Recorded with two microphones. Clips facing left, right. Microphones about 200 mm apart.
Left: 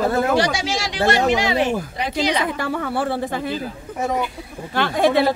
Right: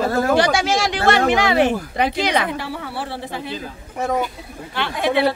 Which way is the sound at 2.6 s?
50° left (ahead or behind).